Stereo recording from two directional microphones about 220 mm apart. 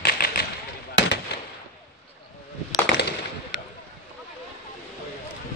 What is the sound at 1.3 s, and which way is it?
Gunshot, 50° left (ahead or behind).